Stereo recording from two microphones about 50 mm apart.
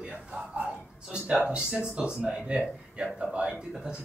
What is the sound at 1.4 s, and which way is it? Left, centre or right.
Speech, centre.